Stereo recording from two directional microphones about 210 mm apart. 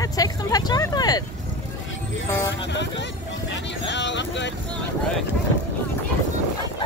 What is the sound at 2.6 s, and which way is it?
Speech, 55° left (ahead or behind).